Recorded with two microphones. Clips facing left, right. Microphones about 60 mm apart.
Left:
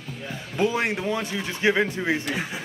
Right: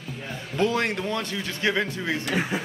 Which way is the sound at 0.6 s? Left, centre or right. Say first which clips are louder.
Even; centre.